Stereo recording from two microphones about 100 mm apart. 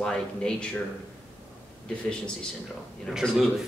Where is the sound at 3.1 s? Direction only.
5° right (ahead or behind).